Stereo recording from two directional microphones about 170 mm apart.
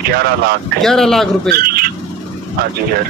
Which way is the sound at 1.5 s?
60° right (ahead or behind).